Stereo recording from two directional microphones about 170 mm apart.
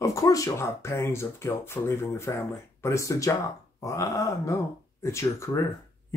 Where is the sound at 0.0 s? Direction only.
20° left (ahead or behind).